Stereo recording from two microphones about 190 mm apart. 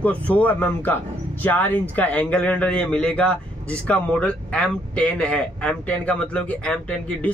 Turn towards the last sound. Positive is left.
turn(degrees=5)  # may be behind; listen again after turning